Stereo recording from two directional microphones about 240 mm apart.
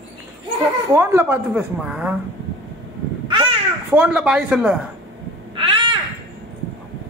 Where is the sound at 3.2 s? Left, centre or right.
Right.